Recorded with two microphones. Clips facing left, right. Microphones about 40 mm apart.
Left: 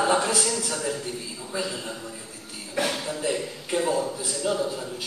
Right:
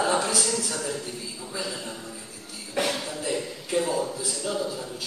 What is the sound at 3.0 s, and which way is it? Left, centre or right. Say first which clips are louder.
A man's voice: left 2 dB; centre.